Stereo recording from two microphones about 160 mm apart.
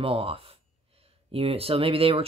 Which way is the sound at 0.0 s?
35° right (ahead or behind).